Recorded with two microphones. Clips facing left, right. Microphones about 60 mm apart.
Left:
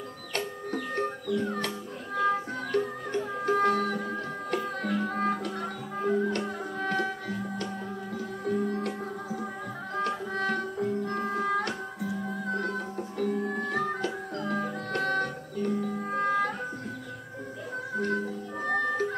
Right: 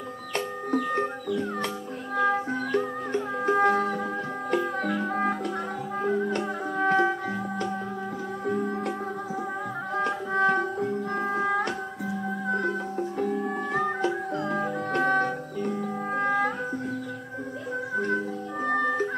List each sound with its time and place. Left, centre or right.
0.7 s music: right
10.3 s music: right
17.9 s music: centre